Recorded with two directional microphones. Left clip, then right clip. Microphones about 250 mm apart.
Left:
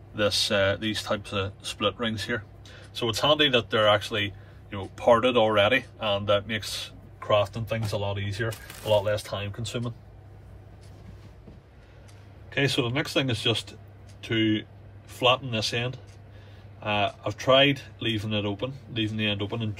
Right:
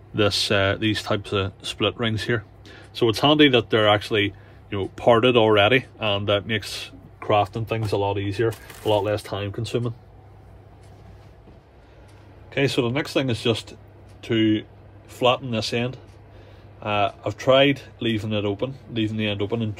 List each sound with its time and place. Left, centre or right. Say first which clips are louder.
0.1 s speech: right 3 dB; right
12.4 s speech: right 4 dB; right